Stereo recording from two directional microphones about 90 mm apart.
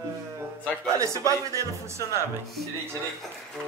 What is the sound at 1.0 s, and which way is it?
Speech, 35° right (ahead or behind).